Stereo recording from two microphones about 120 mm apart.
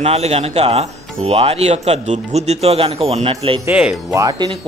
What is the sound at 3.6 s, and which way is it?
Speech, 10° right (ahead or behind).